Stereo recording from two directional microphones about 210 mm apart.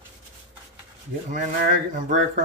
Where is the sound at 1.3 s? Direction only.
40° right (ahead or behind).